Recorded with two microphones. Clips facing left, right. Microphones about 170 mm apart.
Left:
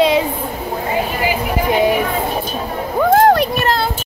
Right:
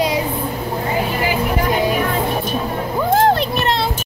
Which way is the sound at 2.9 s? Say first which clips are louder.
Left 4 dB; 55° left (ahead or behind).